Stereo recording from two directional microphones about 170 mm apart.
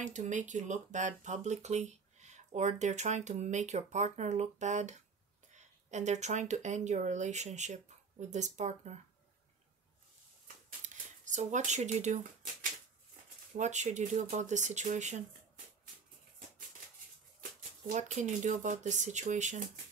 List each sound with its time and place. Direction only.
0.0 s speech: 45° right (ahead or behind)
10.9 s speech: 45° right (ahead or behind)
13.6 s speech: 45° right (ahead or behind)
17.4 s speech: 45° right (ahead or behind)